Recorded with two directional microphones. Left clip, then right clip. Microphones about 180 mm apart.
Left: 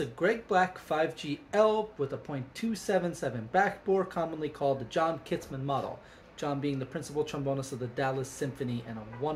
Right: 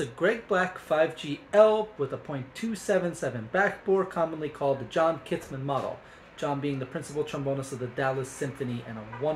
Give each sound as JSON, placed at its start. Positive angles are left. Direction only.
{"t": 0.0, "sound": "speech", "side_deg": -5}